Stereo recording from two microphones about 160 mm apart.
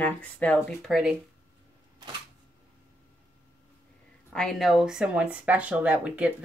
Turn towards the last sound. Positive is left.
turn(degrees=-10)  # may be behind; listen again after turning